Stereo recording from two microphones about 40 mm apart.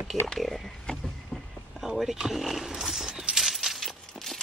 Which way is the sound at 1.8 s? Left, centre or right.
Centre.